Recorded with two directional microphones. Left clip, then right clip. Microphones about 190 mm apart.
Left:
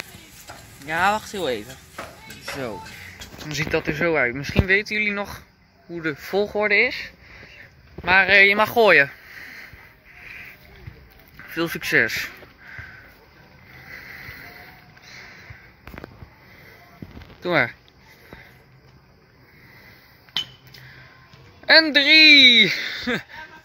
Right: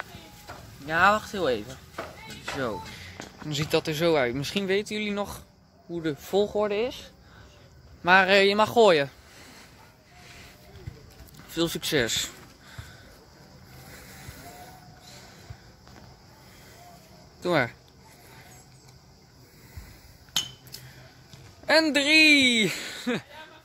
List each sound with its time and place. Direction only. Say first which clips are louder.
0.8 s speech: even; centre (ahead or behind)
3.0 s speech: left 4 dB; 10° right (ahead or behind)
6.4 s speech: left 5 dB; 5° left (ahead or behind)
8.0 s speech: left 4 dB; 35° right (ahead or behind)
8.5 s speech: left 4 dB; 15° right (ahead or behind)
11.6 s speech: left 6 dB; 10° right (ahead or behind)
17.4 s speech: left 4 dB; centre (ahead or behind)
21.6 s speech: left 7 dB; centre (ahead or behind)